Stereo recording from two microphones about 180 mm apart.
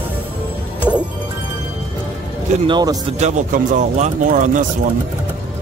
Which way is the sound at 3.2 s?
40° right (ahead or behind).